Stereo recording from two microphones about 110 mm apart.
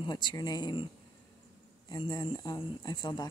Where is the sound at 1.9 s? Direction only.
40° left (ahead or behind).